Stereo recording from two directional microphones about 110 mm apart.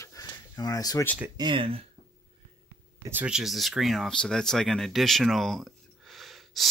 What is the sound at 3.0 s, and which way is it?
Speech, 20° right (ahead or behind).